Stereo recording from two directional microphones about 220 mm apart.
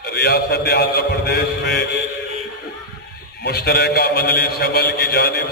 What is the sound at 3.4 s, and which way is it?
A man's voice, 45° left (ahead or behind).